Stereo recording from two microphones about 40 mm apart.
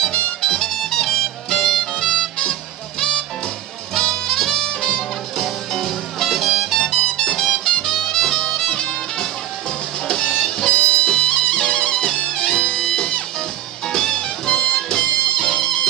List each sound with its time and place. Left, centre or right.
0.4 s music: centre
5.4 s music: centre
6.8 s music: centre